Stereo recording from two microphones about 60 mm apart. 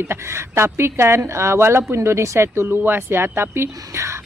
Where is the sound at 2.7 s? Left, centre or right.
Right.